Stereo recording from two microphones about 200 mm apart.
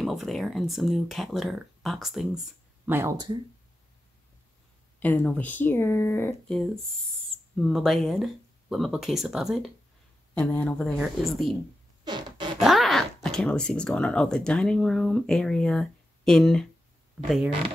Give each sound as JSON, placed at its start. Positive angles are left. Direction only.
{"t": 0.0, "sound": "speech", "side_deg": 0}
{"t": 5.0, "sound": "speech", "side_deg": 10}
{"t": 12.0, "sound": "zipper", "side_deg": -20}
{"t": 12.5, "sound": "speech", "side_deg": 0}